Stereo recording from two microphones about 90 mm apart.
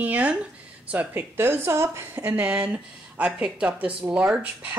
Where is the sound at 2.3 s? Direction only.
15° right (ahead or behind).